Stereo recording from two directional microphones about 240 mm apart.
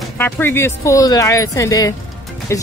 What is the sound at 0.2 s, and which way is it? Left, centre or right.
Speech, centre.